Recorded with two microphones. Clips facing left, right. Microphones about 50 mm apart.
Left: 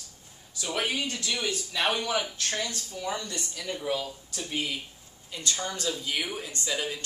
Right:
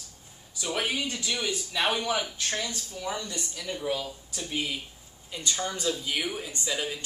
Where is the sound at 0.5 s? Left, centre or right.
Centre.